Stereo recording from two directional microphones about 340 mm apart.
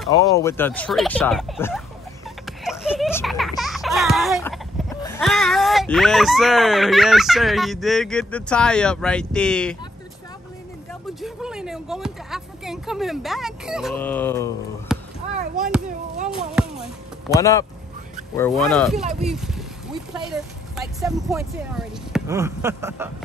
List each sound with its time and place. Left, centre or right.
0.1 s speech: centre
10.9 s speech: centre
15.3 s speech: right
16.3 s speech: centre
17.4 s speech: centre